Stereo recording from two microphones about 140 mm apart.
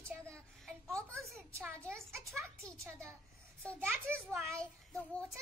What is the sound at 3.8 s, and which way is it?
Speech, 15° right (ahead or behind).